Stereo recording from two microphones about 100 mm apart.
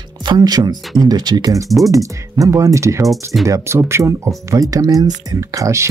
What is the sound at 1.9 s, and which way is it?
Speech, 35° right (ahead or behind).